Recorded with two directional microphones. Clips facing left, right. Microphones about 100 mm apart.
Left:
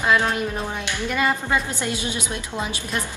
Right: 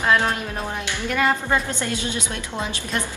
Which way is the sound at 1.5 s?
15° left (ahead or behind).